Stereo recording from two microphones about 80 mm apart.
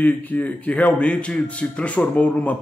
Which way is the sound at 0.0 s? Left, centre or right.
Centre.